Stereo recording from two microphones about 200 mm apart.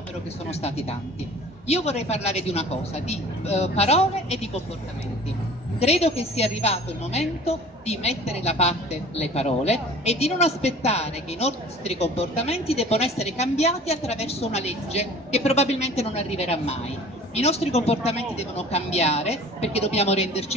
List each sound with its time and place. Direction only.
0.5 s a woman's voice: 30° left (ahead or behind)
5.8 s a woman's voice: 30° left (ahead or behind)